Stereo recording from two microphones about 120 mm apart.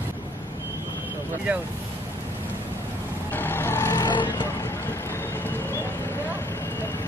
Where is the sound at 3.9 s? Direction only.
35° left (ahead or behind).